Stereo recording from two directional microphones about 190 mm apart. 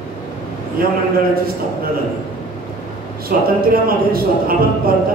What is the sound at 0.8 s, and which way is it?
Speech, 50° right (ahead or behind).